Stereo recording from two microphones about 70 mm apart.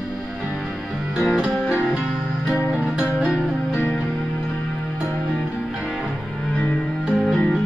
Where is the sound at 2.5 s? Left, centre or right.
Centre.